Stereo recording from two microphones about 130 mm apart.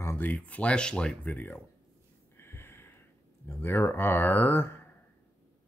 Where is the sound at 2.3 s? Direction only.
20° left (ahead or behind).